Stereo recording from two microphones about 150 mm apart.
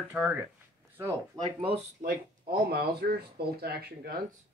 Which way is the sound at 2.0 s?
90° right.